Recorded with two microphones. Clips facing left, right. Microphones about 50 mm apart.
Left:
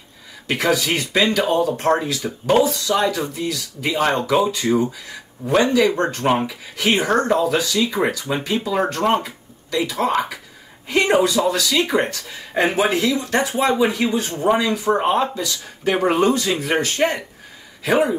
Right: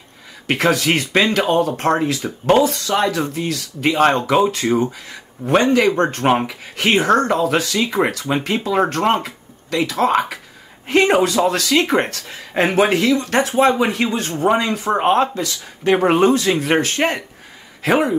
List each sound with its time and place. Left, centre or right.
0.5 s speech: right